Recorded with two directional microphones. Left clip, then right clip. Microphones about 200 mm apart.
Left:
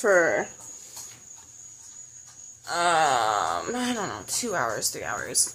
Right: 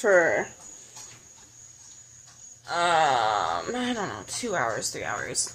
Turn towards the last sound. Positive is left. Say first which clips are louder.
# even
turn(degrees=5)  # may be behind; listen again after turning